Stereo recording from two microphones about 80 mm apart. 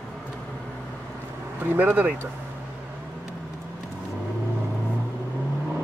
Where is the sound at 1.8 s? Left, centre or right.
Right.